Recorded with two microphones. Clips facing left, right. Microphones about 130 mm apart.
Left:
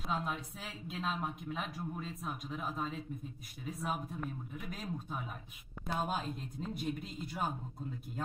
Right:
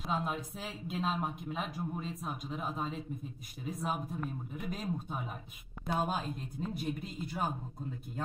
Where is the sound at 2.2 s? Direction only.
Centre (ahead or behind).